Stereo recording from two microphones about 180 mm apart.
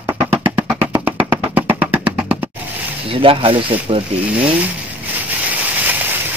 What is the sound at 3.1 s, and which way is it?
Speech, 30° right (ahead or behind).